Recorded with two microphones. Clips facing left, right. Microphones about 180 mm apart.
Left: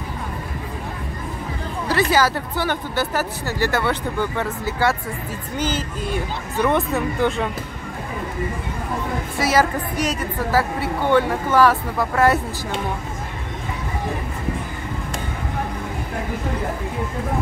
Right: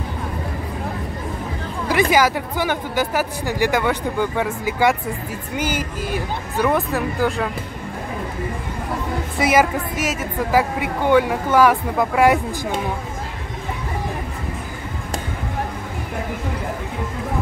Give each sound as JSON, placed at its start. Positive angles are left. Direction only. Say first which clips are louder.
{"t": 1.9, "sound": "speech", "louder": "right 2 dB", "side_deg": -15}
{"t": 9.4, "sound": "speech", "louder": "right 2 dB", "side_deg": -15}